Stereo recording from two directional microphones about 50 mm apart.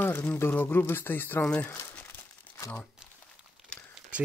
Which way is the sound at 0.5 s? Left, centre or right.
Left.